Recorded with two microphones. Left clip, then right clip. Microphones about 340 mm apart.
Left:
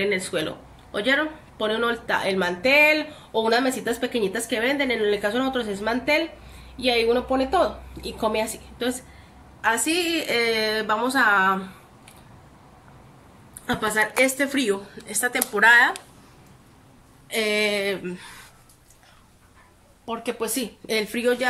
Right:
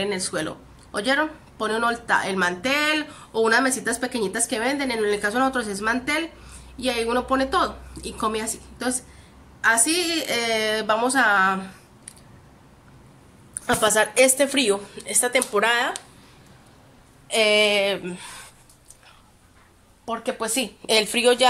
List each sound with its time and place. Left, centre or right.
0.0 s speech: centre
2.4 s speech: right
3.4 s a woman's voice: centre
6.8 s speech: right
7.1 s a woman's voice: centre
9.6 s a woman's voice: centre
13.7 s a woman's voice: centre
17.3 s a woman's voice: centre
20.1 s a woman's voice: centre